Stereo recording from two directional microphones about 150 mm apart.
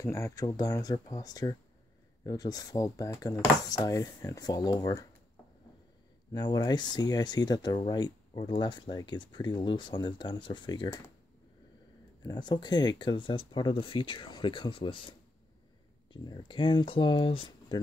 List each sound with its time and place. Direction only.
0.0 s speech: 20° left (ahead or behind)
6.3 s speech: 25° left (ahead or behind)
12.2 s speech: 30° left (ahead or behind)
16.1 s speech: 30° left (ahead or behind)